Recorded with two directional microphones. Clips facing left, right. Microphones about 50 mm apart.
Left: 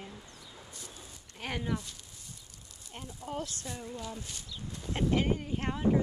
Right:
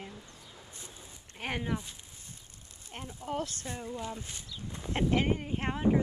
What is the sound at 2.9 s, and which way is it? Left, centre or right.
Speech, right.